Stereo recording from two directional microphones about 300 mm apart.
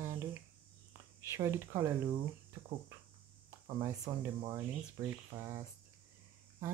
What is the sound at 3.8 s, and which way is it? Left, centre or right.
Speech, centre.